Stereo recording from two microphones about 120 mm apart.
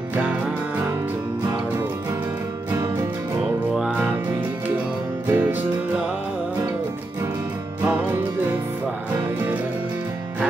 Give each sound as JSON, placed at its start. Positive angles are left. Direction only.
{"t": 0.1, "sound": "music", "side_deg": -10}
{"t": 2.7, "sound": "music", "side_deg": -25}
{"t": 3.7, "sound": "music", "side_deg": -5}
{"t": 5.2, "sound": "music", "side_deg": -15}
{"t": 7.8, "sound": "music", "side_deg": -15}